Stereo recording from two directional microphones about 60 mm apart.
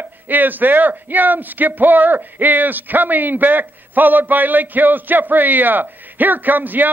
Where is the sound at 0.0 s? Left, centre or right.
Right.